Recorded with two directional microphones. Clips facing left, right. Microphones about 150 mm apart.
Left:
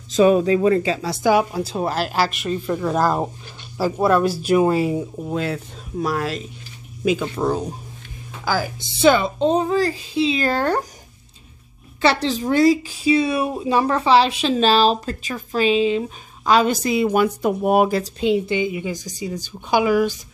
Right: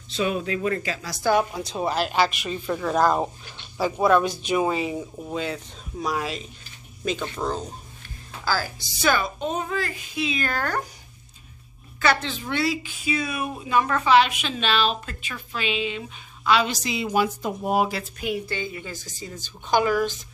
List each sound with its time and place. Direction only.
0.1 s speech: 40° left (ahead or behind)
0.7 s a child's voice: 25° left (ahead or behind)
1.2 s a woman's voice: 10° left (ahead or behind); by 10.8 s 30° left (ahead or behind)
12.0 s a woman's voice: 35° left (ahead or behind)
18.2 s a woman's voice: 20° left (ahead or behind)